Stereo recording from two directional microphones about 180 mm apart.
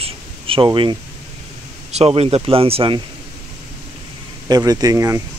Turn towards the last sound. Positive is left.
turn(degrees=-20)  # may be behind; listen again after turning